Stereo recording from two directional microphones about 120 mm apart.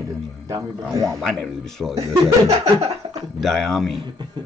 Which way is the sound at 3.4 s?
5° left (ahead or behind).